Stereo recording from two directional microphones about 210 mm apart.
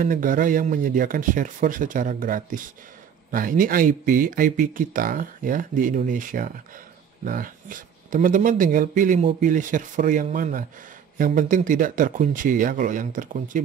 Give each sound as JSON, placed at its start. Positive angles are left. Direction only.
{"t": 0.0, "sound": "speech", "side_deg": -40}